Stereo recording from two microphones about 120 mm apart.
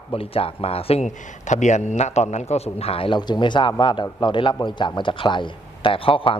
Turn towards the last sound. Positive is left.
turn(degrees=50)  # may be behind; listen again after turning